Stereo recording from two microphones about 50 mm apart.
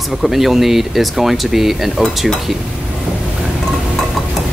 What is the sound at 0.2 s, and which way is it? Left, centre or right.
Speech, centre.